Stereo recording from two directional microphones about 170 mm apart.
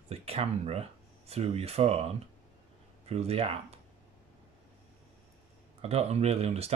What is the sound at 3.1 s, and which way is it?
Speech, 35° right (ahead or behind).